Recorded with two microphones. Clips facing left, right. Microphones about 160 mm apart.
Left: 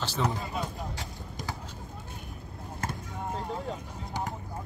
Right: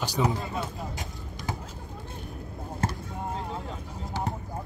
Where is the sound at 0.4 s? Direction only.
Centre (ahead or behind).